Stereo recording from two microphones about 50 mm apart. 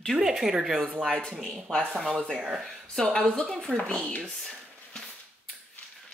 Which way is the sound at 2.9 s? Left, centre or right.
Centre.